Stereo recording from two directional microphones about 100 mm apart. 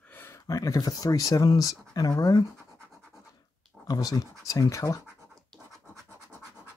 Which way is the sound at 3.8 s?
40° left (ahead or behind).